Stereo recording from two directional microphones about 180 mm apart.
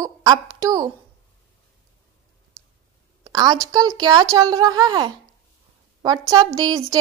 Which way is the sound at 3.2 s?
20° right (ahead or behind).